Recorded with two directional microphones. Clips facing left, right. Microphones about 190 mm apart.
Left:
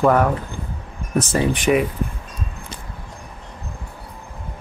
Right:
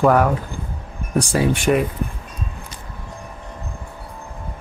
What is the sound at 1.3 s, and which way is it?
Speech, centre (ahead or behind).